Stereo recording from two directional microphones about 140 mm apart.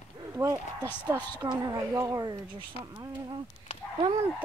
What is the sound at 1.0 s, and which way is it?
Speech, 30° right (ahead or behind).